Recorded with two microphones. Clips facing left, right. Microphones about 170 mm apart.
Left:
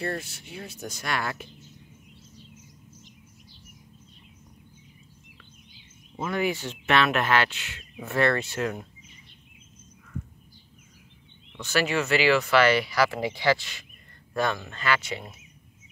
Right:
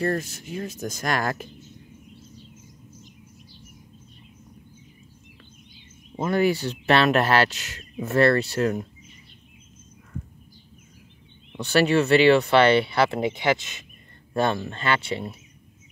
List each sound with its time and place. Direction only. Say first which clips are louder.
0.0 s speech: right 6 dB; 45° right (ahead or behind)
6.1 s speech: right 6 dB; 40° right (ahead or behind)
11.5 s speech: right 6 dB; 35° right (ahead or behind)